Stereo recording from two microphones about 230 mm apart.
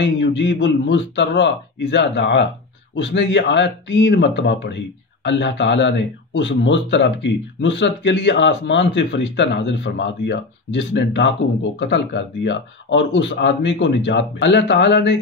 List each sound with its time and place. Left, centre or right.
0.0 s speech: left